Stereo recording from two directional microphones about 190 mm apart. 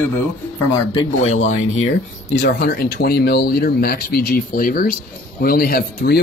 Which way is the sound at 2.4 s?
60° left (ahead or behind).